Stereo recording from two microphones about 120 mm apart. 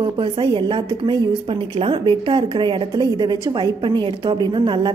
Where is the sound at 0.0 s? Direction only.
45° right (ahead or behind).